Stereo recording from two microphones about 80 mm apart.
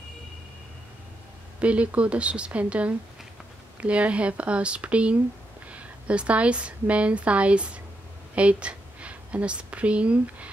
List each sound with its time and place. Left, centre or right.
1.6 s a woman's voice: centre